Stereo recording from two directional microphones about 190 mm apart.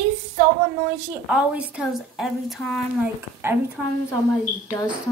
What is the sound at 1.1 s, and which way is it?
Speech, 5° right (ahead or behind).